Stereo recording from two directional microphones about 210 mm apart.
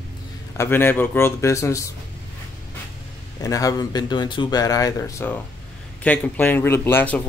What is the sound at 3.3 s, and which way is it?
Speech, 15° left (ahead or behind).